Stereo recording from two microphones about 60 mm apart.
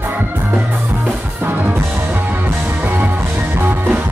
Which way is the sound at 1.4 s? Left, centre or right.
Right.